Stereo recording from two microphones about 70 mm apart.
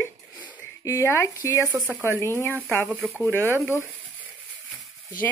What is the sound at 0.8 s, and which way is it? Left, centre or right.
Speech, left.